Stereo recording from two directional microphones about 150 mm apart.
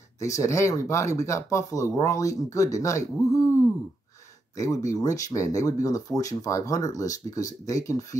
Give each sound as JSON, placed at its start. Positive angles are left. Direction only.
{"t": 0.2, "sound": "speech", "side_deg": 20}